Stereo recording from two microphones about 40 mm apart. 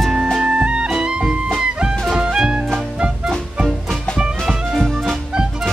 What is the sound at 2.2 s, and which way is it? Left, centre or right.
Music, centre.